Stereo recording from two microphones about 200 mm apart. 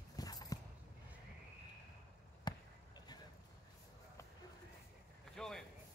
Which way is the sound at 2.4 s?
20° left (ahead or behind).